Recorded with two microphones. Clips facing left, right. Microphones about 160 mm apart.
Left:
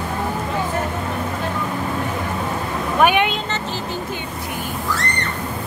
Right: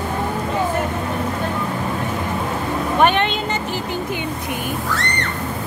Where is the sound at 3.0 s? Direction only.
10° left (ahead or behind).